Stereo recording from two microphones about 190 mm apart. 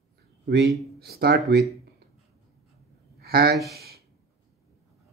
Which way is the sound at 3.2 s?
55° right (ahead or behind).